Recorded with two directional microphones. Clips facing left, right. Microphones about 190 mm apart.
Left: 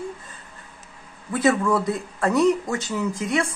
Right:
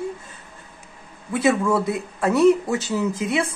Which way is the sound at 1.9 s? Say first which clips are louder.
Right 1 dB; 15° right (ahead or behind).